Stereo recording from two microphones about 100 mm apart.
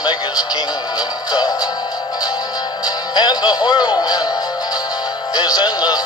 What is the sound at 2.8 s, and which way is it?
Speech, 45° left (ahead or behind).